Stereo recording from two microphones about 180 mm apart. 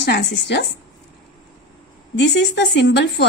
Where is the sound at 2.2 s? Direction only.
75° left (ahead or behind).